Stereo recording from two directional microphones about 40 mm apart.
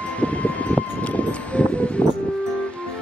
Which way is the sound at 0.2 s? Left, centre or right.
Left.